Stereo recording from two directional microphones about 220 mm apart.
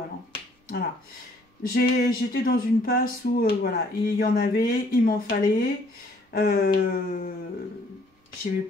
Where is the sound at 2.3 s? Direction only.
45° left (ahead or behind).